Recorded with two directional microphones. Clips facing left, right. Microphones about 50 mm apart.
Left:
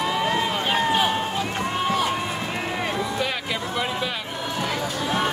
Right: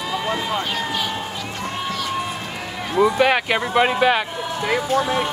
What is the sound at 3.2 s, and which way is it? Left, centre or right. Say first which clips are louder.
Speech: right 9 dB; right.